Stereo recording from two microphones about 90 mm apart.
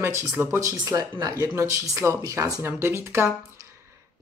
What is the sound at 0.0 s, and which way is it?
Speech, 25° right (ahead or behind).